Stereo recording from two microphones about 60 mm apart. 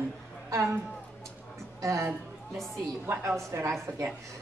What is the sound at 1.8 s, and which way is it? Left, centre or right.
Speech, right.